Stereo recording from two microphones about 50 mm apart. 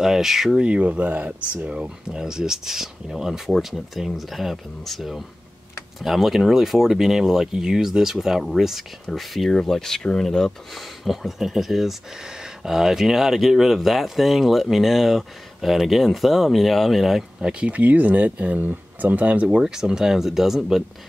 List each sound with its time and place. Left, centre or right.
0.0 s speech: centre
0.6 s speech: right; by 9.6 s centre
9.6 s speech: centre
10.7 s speech: centre
17.5 s speech: right
19.6 s speech: centre